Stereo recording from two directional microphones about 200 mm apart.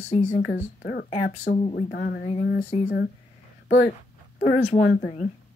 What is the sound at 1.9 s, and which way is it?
Speech, 50° left (ahead or behind).